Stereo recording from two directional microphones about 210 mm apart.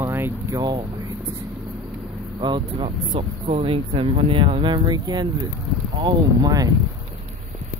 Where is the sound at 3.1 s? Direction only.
35° right (ahead or behind); by 6.7 s 20° right (ahead or behind).